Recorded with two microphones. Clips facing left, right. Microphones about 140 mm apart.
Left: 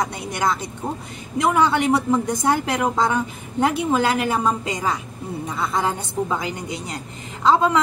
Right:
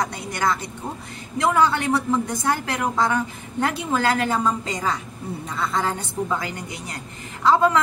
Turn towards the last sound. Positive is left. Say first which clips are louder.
# even
turn(degrees=20)  # may be behind; listen again after turning